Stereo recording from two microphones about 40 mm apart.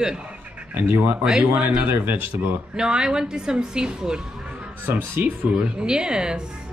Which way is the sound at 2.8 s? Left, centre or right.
Centre.